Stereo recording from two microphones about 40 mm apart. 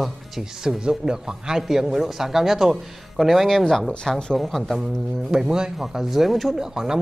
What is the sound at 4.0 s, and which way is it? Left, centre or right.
Speech, centre.